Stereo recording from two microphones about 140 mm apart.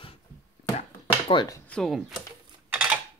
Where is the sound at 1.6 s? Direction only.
5° left (ahead or behind).